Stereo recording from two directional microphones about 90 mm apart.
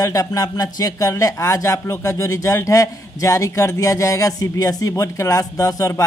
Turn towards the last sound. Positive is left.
turn(degrees=40)  # may be behind; listen again after turning